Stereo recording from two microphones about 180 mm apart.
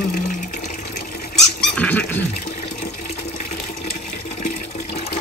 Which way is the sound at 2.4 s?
45° left (ahead or behind).